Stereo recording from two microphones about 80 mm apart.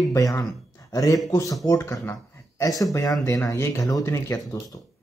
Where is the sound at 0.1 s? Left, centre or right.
Left.